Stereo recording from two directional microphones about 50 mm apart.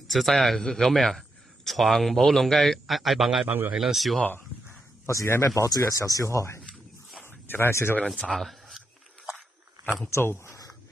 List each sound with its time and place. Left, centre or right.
0.1 s a man's voice: centre
3.4 s a man's voice: right
3.7 s a man's voice: centre
5.0 s speech: left
7.2 s a sound: left
8.3 s a sound: centre
10.0 s speech: left